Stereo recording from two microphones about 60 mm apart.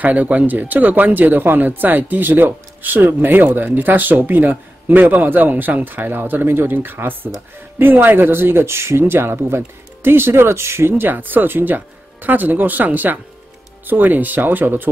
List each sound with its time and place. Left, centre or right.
0.0 s speech: right